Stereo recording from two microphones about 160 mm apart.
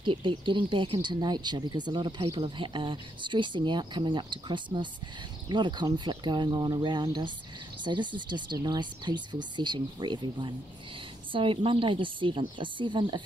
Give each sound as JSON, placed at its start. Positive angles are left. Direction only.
{"t": 0.0, "sound": "speech", "side_deg": -30}